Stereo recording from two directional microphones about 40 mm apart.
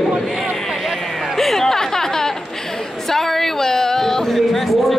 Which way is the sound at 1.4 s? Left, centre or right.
Centre.